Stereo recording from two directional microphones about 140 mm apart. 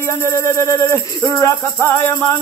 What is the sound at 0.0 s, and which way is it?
Music, 20° left (ahead or behind).